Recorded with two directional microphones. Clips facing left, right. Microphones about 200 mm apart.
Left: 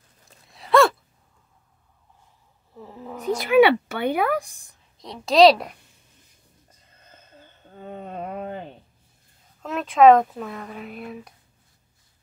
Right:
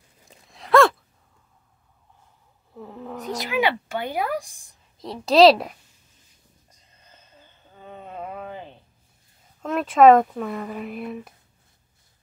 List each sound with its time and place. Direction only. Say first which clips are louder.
0.5 s gasp: right 1 dB; centre (ahead or behind)
2.7 s a sound: right 2 dB; centre (ahead or behind)
3.3 s speech: left 8 dB; 60° left (ahead or behind)
4.9 s speech: right 1 dB; centre (ahead or behind)
7.7 s a sound: left 4 dB; 55° left (ahead or behind)
9.6 s speech: right 1 dB; centre (ahead or behind)